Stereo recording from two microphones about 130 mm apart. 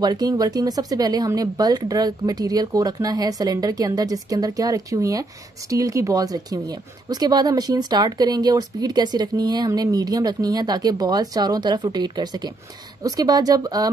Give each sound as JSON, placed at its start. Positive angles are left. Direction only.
{"t": 0.0, "sound": "speech", "side_deg": -30}